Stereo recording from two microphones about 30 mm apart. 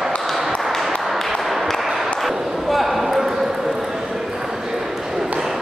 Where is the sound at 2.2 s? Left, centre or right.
Centre.